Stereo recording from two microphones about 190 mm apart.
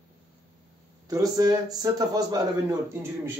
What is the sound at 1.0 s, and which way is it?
Speech, 20° right (ahead or behind).